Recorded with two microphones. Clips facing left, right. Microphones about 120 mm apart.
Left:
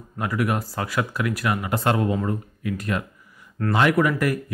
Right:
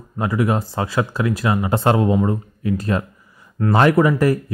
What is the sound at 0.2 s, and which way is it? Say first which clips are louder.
Speech: right 5 dB; 25° right (ahead or behind).